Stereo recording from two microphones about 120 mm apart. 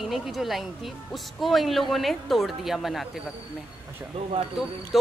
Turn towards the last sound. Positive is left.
turn(degrees=0)  # may be behind; listen again after turning